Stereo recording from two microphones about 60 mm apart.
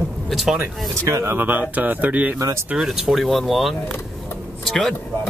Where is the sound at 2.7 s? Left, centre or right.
Centre.